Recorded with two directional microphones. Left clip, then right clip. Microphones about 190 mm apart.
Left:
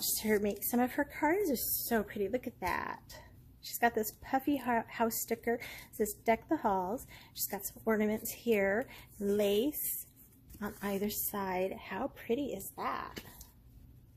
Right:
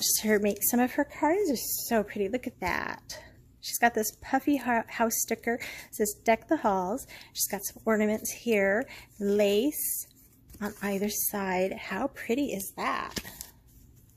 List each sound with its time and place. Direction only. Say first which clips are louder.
0.0 s a woman's voice: right 6 dB; 20° right (ahead or behind)